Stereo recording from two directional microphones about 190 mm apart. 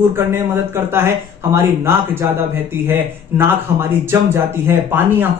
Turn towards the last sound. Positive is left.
turn(degrees=-10)  # may be behind; listen again after turning